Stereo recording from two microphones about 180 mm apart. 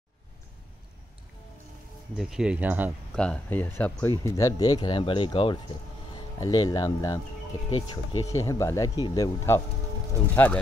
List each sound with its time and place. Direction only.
2.1 s speech: 5° right (ahead or behind)
3.2 s a man's voice: 5° left (ahead or behind); by 8.3 s 30° left (ahead or behind)
8.3 s speech: 15° left (ahead or behind)